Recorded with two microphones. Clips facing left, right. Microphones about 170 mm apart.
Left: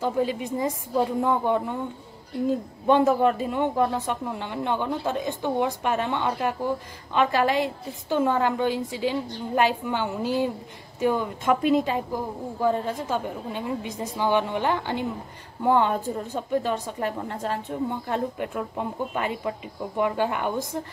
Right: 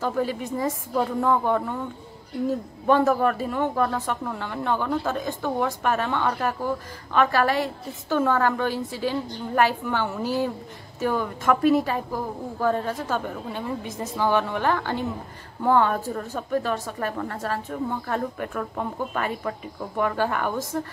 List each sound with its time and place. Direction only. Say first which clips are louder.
0.0 s a woman's voice: left 1 dB; 20° left (ahead or behind)
2.9 s a woman's voice: left 1 dB; 20° left (ahead or behind)